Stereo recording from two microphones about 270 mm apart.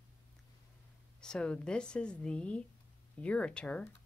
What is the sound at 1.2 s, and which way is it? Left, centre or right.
Speech, centre.